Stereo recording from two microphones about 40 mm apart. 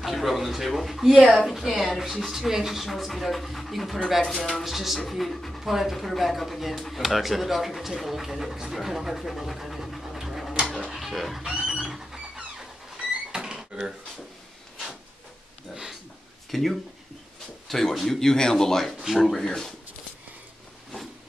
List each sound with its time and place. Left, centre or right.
0.0 s speech: centre
10.9 s chicken: centre
11.6 s a sound: centre
13.3 s a sound: centre
16.4 s speech: centre
19.0 s speech: centre
19.4 s speech: centre